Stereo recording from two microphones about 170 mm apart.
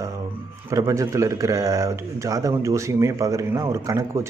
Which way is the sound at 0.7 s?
20° right (ahead or behind).